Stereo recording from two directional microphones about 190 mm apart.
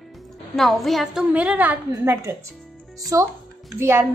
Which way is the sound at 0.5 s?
Centre (ahead or behind).